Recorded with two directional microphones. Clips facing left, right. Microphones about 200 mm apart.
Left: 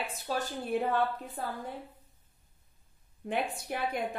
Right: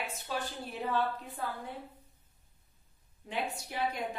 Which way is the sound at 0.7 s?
55° left (ahead or behind).